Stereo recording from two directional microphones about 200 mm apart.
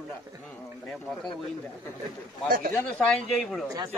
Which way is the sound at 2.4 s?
45° right (ahead or behind).